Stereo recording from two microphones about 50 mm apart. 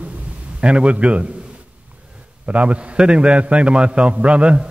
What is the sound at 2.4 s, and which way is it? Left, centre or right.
A man's voice, right.